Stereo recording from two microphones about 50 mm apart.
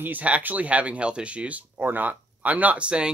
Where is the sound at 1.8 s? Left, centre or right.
Right.